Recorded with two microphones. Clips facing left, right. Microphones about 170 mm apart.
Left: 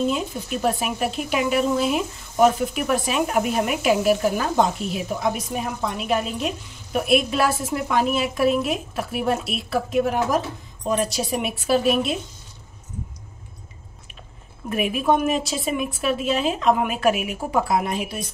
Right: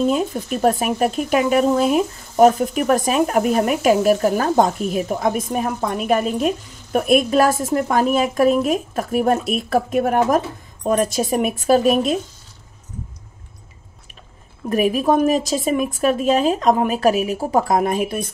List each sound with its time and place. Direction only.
0.1 s speech: 45° right (ahead or behind)
14.7 s speech: 40° right (ahead or behind)